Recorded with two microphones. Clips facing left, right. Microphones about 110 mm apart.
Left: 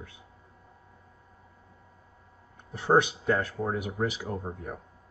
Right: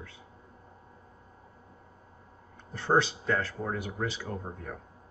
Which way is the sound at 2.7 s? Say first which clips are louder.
Left 3 dB; 15° left (ahead or behind).